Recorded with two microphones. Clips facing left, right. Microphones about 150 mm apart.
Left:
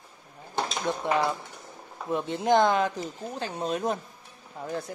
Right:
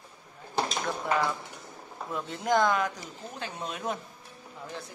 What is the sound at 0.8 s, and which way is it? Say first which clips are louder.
Speech: left 6 dB; 25° left (ahead or behind).